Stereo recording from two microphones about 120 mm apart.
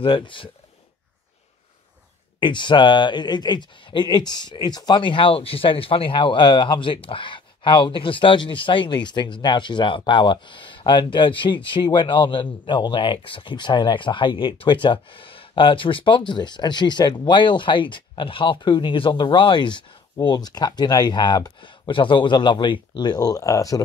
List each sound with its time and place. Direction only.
0.0 s speech: 45° left (ahead or behind)
2.4 s speech: 40° left (ahead or behind)